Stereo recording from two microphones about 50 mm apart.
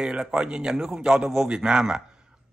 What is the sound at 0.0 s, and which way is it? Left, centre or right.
A man's voice, centre.